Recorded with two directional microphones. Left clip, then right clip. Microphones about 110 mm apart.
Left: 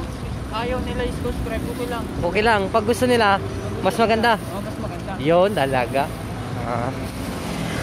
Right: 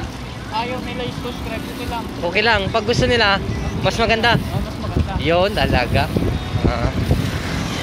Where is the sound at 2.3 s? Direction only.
35° left (ahead or behind).